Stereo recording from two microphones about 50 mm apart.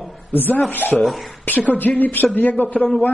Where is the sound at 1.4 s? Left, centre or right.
Left.